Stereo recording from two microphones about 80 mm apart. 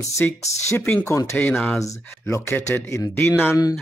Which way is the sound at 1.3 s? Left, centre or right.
Left.